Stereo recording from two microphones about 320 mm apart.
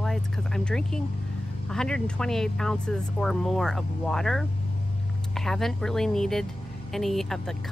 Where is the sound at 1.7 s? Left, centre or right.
Centre.